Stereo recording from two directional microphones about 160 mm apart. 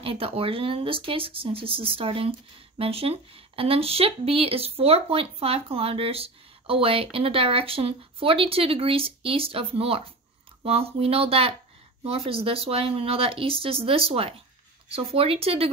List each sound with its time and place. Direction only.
0.0 s speech: 35° right (ahead or behind)